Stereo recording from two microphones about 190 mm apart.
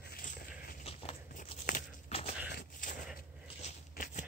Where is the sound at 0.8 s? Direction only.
30° left (ahead or behind).